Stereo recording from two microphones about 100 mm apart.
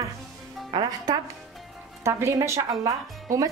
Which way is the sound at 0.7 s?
45° right (ahead or behind).